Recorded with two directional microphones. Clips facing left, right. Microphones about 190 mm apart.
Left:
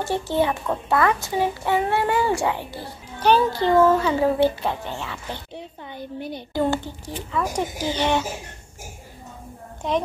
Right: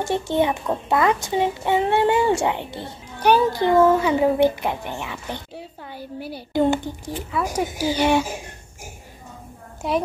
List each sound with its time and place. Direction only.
0.0 s a child's voice: 20° right (ahead or behind)
6.5 s speech: 15° right (ahead or behind)
9.8 s speech: 10° right (ahead or behind)